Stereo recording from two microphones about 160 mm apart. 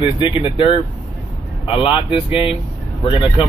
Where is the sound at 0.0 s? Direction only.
30° left (ahead or behind).